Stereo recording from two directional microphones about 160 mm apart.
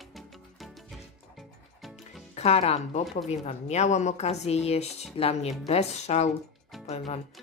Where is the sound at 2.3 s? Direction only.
40° left (ahead or behind).